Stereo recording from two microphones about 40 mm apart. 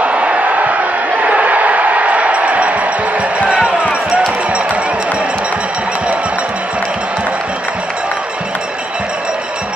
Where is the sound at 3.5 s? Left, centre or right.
Right.